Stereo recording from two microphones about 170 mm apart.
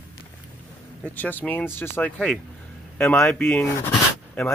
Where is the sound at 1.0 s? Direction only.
10° left (ahead or behind).